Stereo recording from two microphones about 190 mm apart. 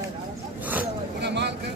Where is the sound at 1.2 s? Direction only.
65° right (ahead or behind).